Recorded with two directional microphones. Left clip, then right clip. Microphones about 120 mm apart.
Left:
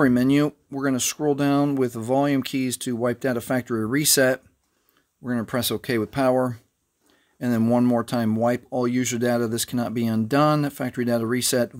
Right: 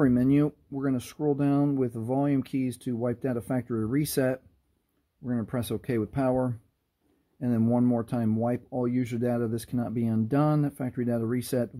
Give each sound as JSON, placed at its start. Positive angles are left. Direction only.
{"t": 0.0, "sound": "speech", "side_deg": 20}